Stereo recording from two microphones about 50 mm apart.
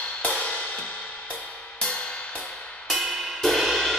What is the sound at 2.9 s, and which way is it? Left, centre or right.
Music, centre.